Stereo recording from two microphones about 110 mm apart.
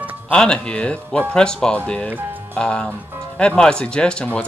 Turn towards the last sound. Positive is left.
turn(degrees=10)  # may be behind; listen again after turning